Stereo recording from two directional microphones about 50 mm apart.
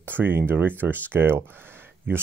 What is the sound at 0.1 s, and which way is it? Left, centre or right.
Speech, right.